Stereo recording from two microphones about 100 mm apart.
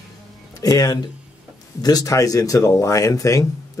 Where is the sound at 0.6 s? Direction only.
40° left (ahead or behind).